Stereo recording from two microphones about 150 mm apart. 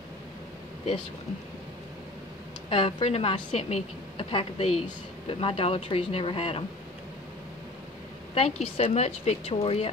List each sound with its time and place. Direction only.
2.7 s a woman's voice: 40° left (ahead or behind)
8.4 s a woman's voice: 40° left (ahead or behind)